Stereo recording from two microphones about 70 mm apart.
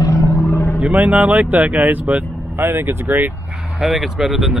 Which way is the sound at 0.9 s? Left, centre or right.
Right.